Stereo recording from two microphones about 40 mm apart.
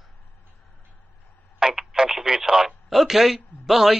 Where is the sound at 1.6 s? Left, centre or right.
Centre.